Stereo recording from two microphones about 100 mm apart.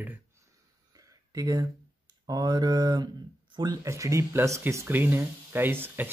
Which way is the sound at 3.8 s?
30° right (ahead or behind).